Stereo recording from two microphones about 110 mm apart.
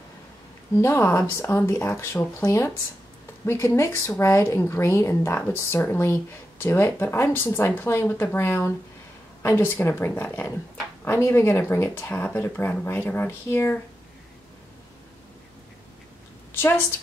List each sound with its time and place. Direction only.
0.7 s speech: 25° left (ahead or behind)
16.5 s a woman's voice: 20° left (ahead or behind)